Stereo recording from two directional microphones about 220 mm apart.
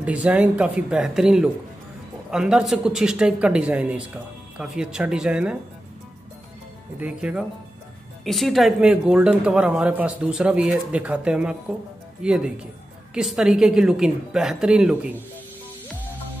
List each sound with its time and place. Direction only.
0.0 s speech: 5° right (ahead or behind)
7.0 s speech: 5° right (ahead or behind)